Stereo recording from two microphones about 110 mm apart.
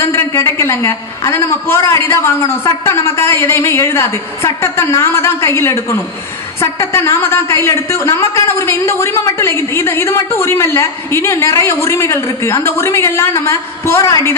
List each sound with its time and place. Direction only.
0.0 s a woman's voice: 25° left (ahead or behind)